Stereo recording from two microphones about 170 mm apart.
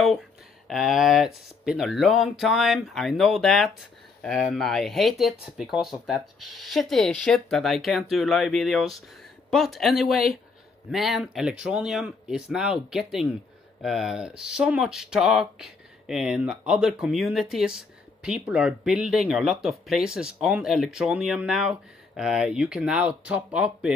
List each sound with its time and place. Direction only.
0.7 s speech: centre (ahead or behind)